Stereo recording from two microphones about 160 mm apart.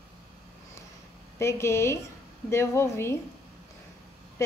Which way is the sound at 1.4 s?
15° left (ahead or behind).